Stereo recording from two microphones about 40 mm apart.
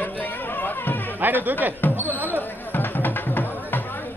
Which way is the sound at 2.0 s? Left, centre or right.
Right.